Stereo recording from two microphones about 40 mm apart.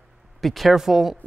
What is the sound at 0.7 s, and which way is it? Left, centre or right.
Speech, centre.